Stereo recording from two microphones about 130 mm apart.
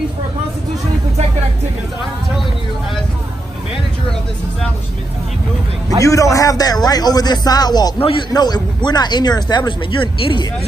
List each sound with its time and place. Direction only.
5.9 s speech: 25° left (ahead or behind)
8.0 s speech: 45° left (ahead or behind)
8.3 s speech: 30° left (ahead or behind)